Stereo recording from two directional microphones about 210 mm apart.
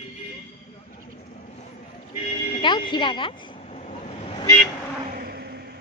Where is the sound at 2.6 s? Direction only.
20° left (ahead or behind).